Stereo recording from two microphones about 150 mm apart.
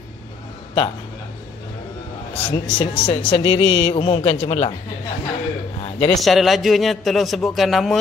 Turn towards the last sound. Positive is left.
turn(degrees=0)  # may be behind; listen again after turning